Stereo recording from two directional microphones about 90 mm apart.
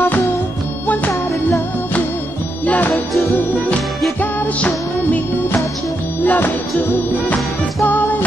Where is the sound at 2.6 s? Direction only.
15° left (ahead or behind).